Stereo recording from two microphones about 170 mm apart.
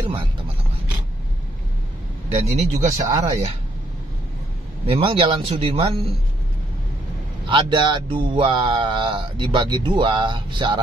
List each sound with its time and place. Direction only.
2.4 s speech: 45° right (ahead or behind)
5.0 s speech: 30° right (ahead or behind)
7.4 s speech: 30° right (ahead or behind)